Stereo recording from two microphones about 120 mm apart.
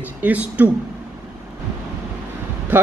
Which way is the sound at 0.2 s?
10° right (ahead or behind).